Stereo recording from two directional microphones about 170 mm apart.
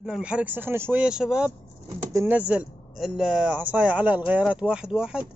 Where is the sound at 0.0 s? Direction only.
5° right (ahead or behind).